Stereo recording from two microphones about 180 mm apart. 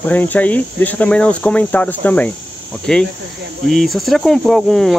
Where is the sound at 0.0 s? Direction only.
10° left (ahead or behind).